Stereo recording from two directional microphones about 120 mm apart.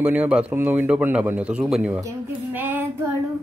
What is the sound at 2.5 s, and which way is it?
Child singing, 15° right (ahead or behind).